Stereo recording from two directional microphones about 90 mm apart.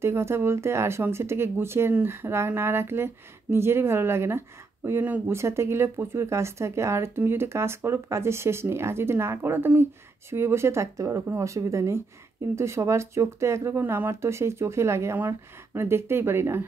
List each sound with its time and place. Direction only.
0.0 s speech: 30° right (ahead or behind)